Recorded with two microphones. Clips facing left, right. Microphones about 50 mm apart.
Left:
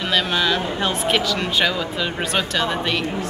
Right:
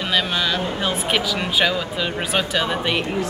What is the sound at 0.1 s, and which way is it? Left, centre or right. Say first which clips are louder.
Speech: left 2 dB; centre.